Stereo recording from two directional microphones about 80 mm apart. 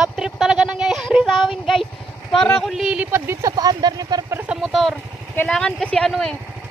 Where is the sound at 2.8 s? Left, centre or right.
Centre.